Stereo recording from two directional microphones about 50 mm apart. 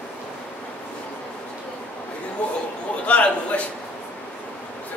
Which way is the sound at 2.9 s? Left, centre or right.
Left.